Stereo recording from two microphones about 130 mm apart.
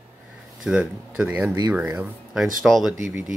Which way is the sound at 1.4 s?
20° right (ahead or behind).